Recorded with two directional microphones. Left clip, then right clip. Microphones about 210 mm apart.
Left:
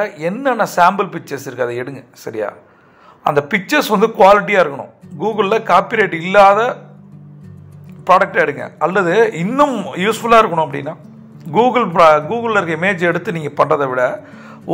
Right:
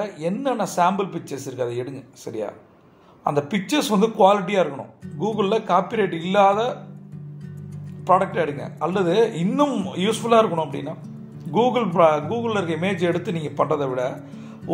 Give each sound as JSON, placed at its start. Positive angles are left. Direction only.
{"t": 0.0, "sound": "a man's voice", "side_deg": 15}
{"t": 8.1, "sound": "a man's voice", "side_deg": 20}